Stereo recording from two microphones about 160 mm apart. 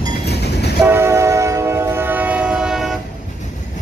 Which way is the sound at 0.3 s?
90° left.